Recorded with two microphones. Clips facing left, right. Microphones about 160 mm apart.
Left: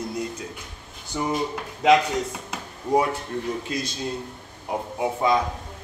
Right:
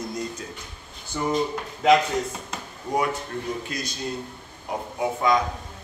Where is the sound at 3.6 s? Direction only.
25° left (ahead or behind).